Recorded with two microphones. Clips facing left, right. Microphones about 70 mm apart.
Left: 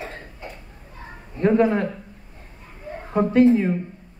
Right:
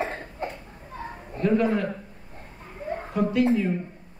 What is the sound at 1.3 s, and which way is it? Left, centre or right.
Speech, left.